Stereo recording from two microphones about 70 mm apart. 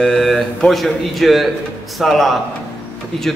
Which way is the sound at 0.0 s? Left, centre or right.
Centre.